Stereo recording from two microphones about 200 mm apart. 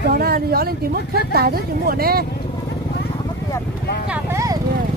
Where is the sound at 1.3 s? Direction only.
50° right (ahead or behind).